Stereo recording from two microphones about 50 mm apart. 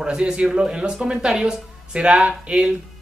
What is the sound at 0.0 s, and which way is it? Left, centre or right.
Speech, centre.